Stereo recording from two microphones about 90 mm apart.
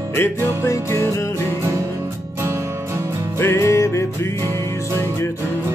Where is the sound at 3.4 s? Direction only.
30° left (ahead or behind).